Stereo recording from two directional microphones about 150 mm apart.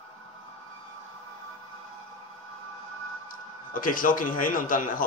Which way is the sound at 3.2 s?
65° left (ahead or behind).